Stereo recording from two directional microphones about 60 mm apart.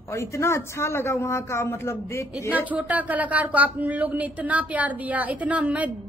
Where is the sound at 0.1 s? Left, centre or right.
Left.